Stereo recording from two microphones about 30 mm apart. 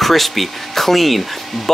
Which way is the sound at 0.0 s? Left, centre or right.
Centre.